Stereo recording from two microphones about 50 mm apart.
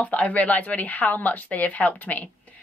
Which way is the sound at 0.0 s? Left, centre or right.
Left.